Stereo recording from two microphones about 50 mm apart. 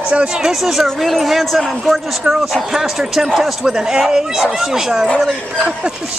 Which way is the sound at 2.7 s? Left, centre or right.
Centre.